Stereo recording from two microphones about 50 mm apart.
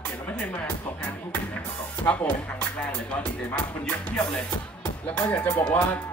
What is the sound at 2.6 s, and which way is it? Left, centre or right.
Music, left.